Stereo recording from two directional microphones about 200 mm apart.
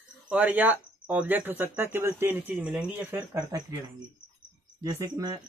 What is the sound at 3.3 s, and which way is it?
Speech, 20° right (ahead or behind).